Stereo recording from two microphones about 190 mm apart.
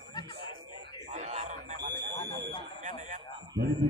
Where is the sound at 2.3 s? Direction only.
55° right (ahead or behind).